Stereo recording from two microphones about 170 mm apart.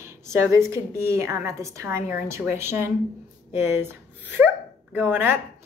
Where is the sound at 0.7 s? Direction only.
15° right (ahead or behind).